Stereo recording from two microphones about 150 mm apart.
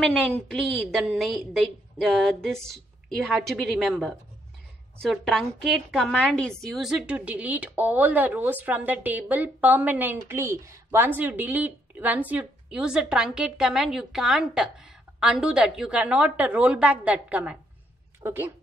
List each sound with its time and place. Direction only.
0.0 s a woman's voice: 10° left (ahead or behind); by 18.5 s 15° right (ahead or behind)